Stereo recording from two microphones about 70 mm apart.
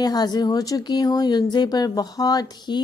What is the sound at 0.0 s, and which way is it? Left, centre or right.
A woman's voice, left.